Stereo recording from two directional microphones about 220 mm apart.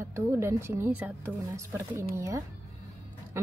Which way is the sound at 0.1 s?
10° right (ahead or behind).